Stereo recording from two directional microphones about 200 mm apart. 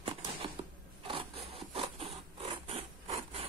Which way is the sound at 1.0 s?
25° right (ahead or behind).